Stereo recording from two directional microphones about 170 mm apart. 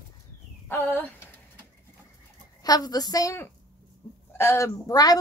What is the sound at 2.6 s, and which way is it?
A woman's voice, 20° left (ahead or behind).